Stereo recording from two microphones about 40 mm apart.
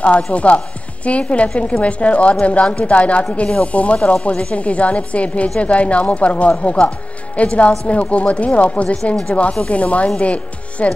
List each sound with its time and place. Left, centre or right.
0.3 s speech: left